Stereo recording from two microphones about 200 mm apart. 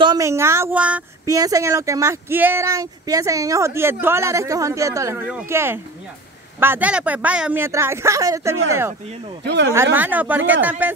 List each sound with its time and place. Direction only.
0.0 s speech: 15° right (ahead or behind)
9.4 s speech: 60° right (ahead or behind)
9.9 s speech: 10° right (ahead or behind)